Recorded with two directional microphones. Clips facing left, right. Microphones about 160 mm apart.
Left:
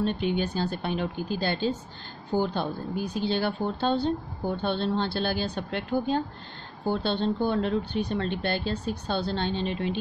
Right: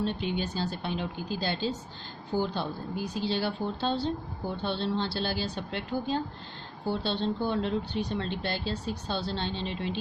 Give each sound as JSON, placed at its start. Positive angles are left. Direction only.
{"t": 0.0, "sound": "a woman's voice", "side_deg": 55}